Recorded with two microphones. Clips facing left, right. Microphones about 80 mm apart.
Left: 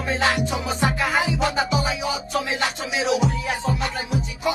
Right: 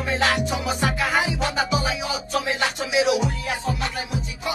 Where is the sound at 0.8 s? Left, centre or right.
Left.